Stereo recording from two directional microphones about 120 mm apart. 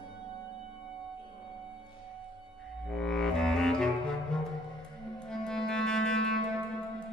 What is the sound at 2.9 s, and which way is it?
Music, 5° left (ahead or behind).